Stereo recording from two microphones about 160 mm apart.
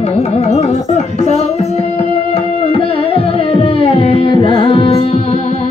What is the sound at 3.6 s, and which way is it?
Music, 35° left (ahead or behind).